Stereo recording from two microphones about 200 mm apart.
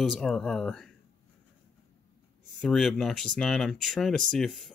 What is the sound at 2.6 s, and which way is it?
Speech, centre (ahead or behind).